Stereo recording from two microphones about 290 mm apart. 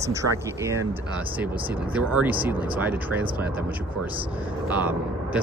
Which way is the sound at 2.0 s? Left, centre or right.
Centre.